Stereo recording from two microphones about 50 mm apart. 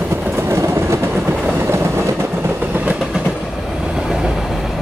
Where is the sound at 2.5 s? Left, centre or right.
Right.